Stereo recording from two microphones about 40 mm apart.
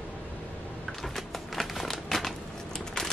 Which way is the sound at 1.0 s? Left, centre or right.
Centre.